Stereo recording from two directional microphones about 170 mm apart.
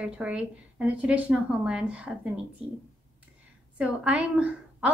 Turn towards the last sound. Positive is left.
turn(degrees=-10)  # may be behind; listen again after turning